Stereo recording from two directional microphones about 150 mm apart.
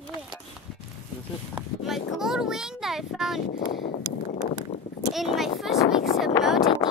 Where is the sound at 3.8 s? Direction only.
65° left (ahead or behind).